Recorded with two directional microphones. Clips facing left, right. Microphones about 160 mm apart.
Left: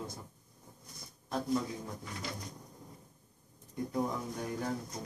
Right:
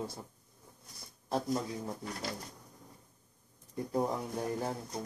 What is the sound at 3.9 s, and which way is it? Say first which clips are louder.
Speech: right 3 dB; 30° right (ahead or behind).